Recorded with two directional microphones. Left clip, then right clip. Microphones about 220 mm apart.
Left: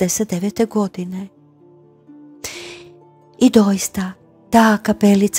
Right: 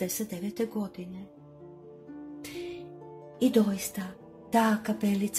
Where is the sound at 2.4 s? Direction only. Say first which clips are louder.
Left 9 dB; 45° left (ahead or behind).